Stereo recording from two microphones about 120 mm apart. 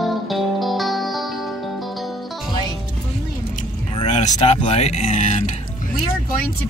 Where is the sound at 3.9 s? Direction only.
70° left (ahead or behind).